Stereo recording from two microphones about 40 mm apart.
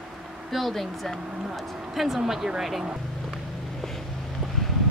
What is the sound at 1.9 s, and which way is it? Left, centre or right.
Speech, centre.